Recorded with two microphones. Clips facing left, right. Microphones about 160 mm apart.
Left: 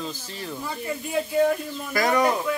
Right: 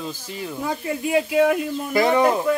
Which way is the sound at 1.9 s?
25° right (ahead or behind).